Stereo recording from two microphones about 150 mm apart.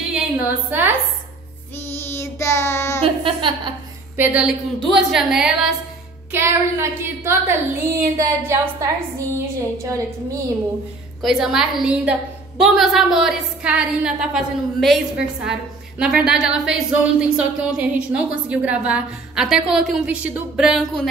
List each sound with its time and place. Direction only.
0.1 s a woman's voice: 10° right (ahead or behind)
1.9 s child singing: 15° left (ahead or behind)
3.0 s speech: 35° right (ahead or behind)
4.2 s a woman's voice: 10° right (ahead or behind)
6.3 s a woman's voice: 15° right (ahead or behind)
9.6 s a woman's voice: 20° right (ahead or behind)
11.2 s speech: centre (ahead or behind)